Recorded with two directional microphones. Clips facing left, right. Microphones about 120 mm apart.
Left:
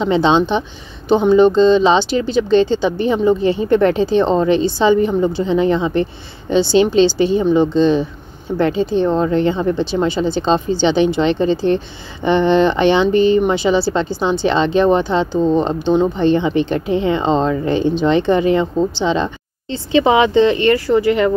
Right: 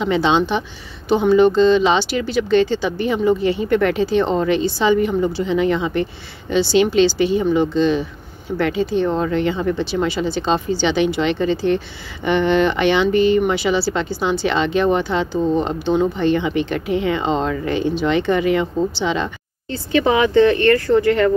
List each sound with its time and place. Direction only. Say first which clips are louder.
0.0 s speech: left 3 dB; 30° left (ahead or behind); by 21.3 s 15° left (ahead or behind)